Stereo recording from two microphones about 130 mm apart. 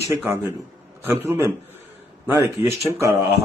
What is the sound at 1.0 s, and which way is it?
Speech, 20° right (ahead or behind).